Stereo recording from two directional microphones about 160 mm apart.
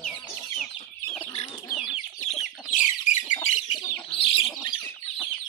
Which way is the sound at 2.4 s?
55° left (ahead or behind).